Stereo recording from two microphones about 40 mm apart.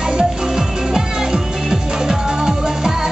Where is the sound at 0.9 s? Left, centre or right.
Centre.